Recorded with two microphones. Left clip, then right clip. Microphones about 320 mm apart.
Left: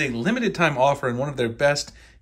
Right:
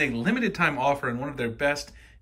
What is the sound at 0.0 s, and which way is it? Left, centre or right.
Speech, centre.